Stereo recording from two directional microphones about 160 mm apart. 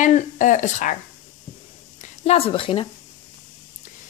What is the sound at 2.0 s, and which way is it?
Speech, 40° left (ahead or behind).